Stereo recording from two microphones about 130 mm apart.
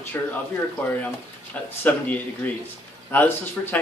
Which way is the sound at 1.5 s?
15° left (ahead or behind).